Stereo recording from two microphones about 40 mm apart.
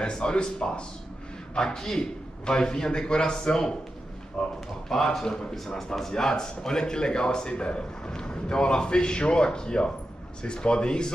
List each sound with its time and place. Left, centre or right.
0.0 s speech: left